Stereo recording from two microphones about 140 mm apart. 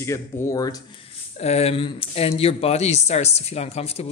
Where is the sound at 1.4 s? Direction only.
50° left (ahead or behind).